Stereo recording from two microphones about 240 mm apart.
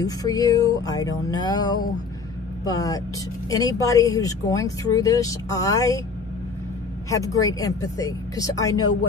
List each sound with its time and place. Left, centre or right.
0.0 s speech: centre
7.1 s speech: centre